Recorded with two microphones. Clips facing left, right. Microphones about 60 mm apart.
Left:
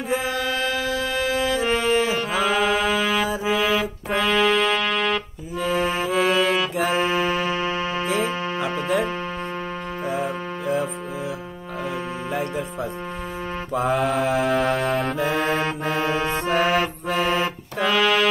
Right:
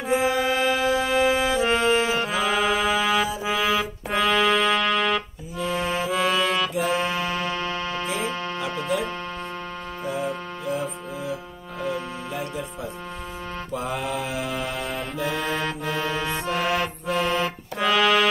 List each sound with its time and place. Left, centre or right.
0.1 s music: right
1.7 s music: centre
2.1 s music: centre
5.6 s accordion: left
6.0 s music: centre
6.7 s music: left
11.8 s music: left
13.9 s mantra: left
14.6 s music: left
15.1 s music: left
17.8 s music: centre